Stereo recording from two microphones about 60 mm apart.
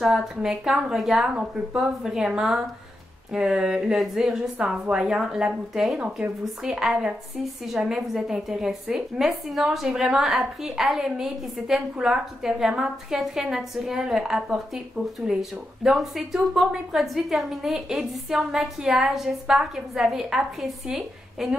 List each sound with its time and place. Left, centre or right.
0.0 s a woman's voice: centre